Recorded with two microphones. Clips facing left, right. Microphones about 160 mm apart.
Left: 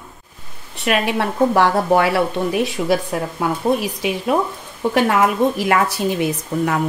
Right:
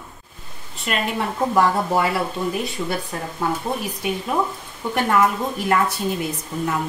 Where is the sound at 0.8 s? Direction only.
75° left (ahead or behind).